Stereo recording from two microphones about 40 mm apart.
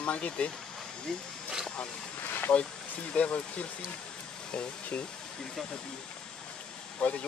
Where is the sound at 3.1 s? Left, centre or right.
Left.